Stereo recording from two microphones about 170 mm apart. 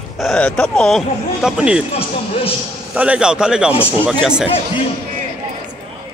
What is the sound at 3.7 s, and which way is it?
Speech, 35° left (ahead or behind).